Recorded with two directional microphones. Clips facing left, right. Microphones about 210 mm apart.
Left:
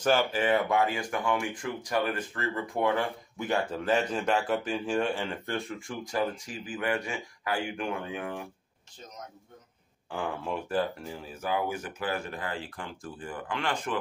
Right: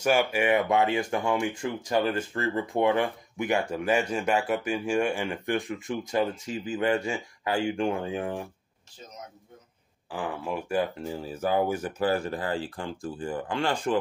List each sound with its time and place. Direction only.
0.0 s speech: 10° right (ahead or behind); by 8.4 s 30° right (ahead or behind)
10.1 s speech: 5° right (ahead or behind)
11.0 s speech: 30° right (ahead or behind)